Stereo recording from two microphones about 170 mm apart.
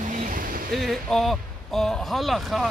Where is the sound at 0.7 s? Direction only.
Centre (ahead or behind).